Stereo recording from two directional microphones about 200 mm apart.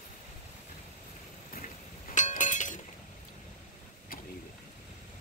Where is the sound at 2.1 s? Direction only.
40° left (ahead or behind).